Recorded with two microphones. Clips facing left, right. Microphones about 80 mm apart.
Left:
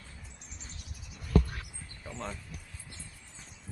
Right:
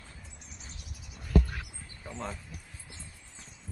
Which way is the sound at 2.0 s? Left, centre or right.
Centre.